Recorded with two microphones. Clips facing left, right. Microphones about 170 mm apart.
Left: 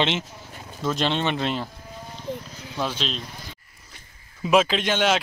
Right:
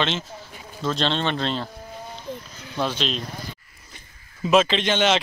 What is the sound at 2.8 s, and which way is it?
A man's voice, centre (ahead or behind).